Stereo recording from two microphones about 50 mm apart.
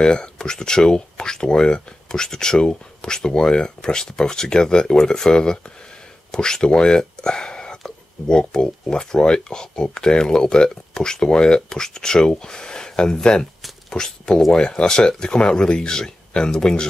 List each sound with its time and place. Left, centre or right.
0.0 s speech: centre